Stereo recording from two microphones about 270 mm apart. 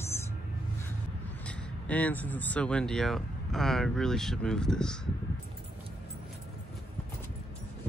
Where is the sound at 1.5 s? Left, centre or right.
Centre.